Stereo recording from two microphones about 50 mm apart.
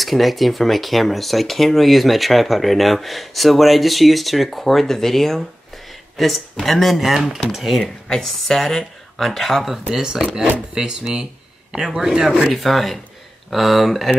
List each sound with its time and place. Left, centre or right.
0.0 s speech: centre
12.5 s speech: centre